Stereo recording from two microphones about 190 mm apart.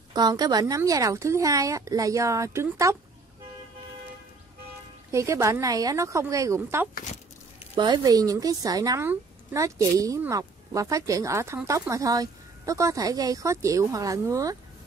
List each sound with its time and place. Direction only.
0.1 s a woman's voice: 20° right (ahead or behind)
5.1 s a woman's voice: 15° right (ahead or behind)